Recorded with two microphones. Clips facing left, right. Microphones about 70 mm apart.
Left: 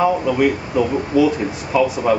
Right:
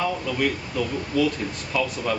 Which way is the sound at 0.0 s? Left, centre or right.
Left.